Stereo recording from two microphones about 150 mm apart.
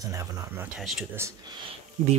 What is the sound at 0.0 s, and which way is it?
Speech, 20° right (ahead or behind).